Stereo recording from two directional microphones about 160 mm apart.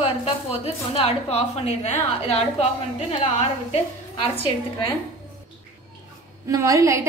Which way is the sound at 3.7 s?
35° left (ahead or behind).